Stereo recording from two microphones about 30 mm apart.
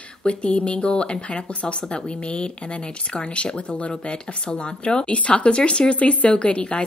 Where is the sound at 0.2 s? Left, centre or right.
Left.